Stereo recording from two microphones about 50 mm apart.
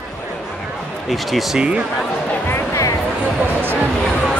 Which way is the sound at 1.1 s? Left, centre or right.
Centre.